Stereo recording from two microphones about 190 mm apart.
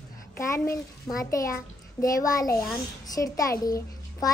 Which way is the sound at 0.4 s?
15° left (ahead or behind).